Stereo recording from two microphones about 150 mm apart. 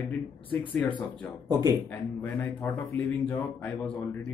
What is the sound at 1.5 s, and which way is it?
Speech, 25° right (ahead or behind).